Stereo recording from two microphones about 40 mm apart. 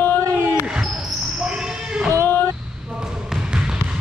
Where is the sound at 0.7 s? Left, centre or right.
Centre.